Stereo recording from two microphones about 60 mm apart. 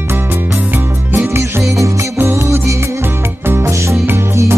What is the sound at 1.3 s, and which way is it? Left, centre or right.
Music, right.